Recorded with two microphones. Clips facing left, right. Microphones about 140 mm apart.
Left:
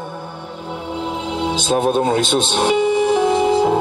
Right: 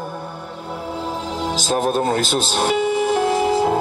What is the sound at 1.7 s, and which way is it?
Music, centre (ahead or behind).